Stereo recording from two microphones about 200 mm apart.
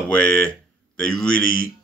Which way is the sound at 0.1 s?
5° left (ahead or behind).